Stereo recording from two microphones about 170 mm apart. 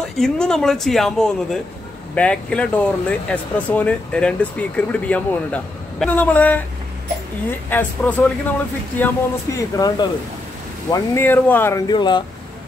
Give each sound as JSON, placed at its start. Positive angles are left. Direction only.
{"t": 0.2, "sound": "speech", "side_deg": 5}
{"t": 7.7, "sound": "speech", "side_deg": 10}
{"t": 11.9, "sound": "speech", "side_deg": 25}